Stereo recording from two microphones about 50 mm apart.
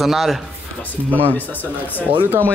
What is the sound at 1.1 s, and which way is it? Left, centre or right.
Speech, left.